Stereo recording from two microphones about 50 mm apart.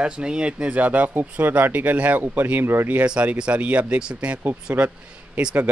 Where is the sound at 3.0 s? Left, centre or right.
Right.